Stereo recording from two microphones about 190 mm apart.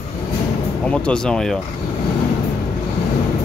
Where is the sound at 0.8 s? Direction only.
5° left (ahead or behind).